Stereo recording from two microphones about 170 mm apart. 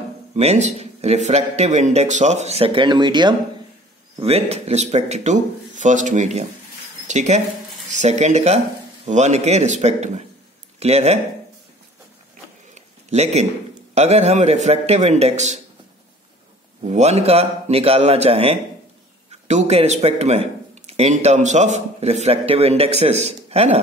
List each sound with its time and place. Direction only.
0.4 s speech: 40° right (ahead or behind)
4.2 s speech: 35° right (ahead or behind)
12.7 s a sound: 40° right (ahead or behind)
13.9 s speech: 40° right (ahead or behind)
16.8 s speech: 40° right (ahead or behind)